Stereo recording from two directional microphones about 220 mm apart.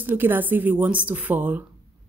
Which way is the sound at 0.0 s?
10° right (ahead or behind).